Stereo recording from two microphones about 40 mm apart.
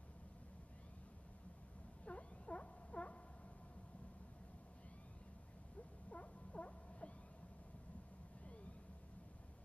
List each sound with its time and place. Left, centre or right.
2.0 s owl: left
6.0 s owl: left